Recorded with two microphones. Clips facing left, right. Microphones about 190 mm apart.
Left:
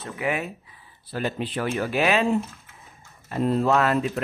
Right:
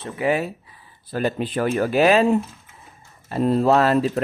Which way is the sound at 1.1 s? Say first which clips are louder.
Right 5 dB; 45° right (ahead or behind).